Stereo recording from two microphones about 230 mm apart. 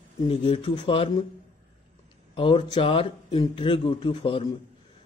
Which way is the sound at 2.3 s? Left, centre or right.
Left.